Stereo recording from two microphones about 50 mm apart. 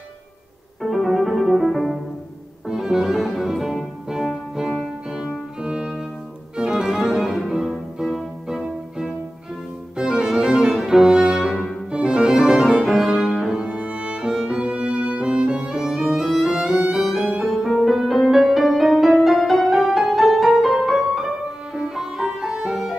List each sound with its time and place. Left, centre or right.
0.8 s music: centre
5.6 s music: centre
9.9 s music: centre
11.5 s music: centre
12.8 s music: centre